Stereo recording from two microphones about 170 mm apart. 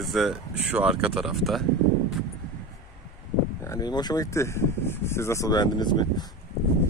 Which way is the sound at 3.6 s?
25° left (ahead or behind).